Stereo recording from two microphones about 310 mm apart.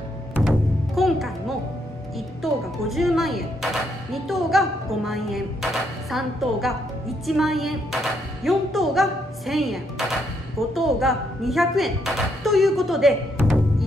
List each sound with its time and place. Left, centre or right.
0.4 s music: centre
2.1 s a woman's voice: centre